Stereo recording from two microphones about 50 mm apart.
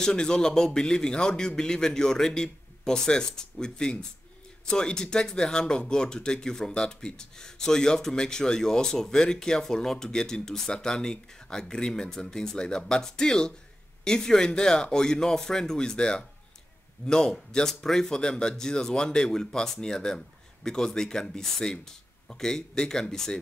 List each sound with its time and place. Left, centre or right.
0.0 s speech: centre